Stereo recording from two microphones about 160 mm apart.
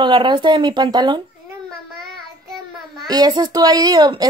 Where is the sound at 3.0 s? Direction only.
25° right (ahead or behind).